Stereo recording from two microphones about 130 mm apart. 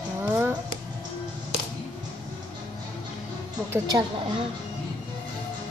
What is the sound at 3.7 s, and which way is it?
Speech, 30° right (ahead or behind).